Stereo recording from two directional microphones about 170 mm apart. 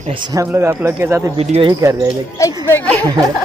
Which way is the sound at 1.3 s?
35° right (ahead or behind).